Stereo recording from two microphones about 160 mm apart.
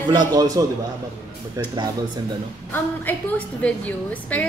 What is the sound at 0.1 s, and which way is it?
Speech, 25° right (ahead or behind).